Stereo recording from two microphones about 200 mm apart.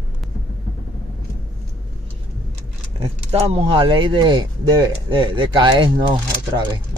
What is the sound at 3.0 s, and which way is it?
Speech, 30° right (ahead or behind).